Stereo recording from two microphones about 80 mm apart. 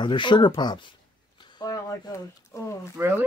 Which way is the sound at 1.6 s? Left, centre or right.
Left.